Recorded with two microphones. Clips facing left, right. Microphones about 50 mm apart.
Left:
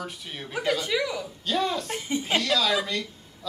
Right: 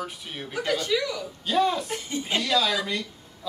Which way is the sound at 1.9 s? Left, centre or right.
Centre.